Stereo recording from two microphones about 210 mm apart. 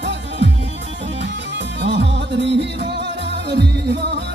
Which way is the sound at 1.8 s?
55° right (ahead or behind).